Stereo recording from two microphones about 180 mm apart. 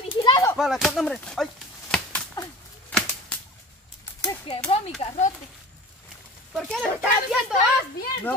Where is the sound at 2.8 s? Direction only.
10° left (ahead or behind).